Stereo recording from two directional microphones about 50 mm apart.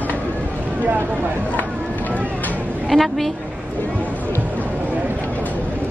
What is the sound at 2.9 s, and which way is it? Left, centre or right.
Speech, centre.